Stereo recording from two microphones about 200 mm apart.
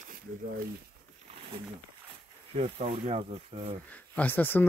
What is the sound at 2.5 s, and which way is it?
Speech, 30° right (ahead or behind).